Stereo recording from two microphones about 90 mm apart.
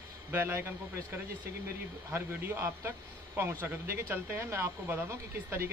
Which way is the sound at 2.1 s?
30° right (ahead or behind).